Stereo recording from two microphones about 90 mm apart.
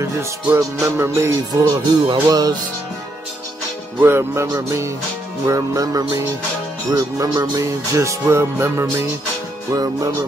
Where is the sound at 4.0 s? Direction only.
25° right (ahead or behind).